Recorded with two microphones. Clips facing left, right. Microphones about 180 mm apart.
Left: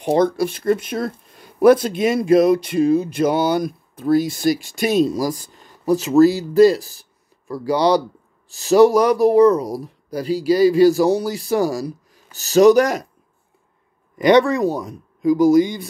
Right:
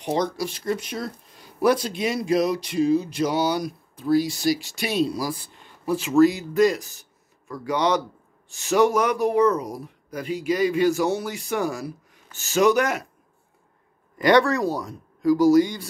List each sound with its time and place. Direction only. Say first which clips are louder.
0.0 s speech: left 8 dB; 55° left (ahead or behind); by 13.0 s 35° left (ahead or behind)
14.1 s speech: left 4 dB; 20° left (ahead or behind)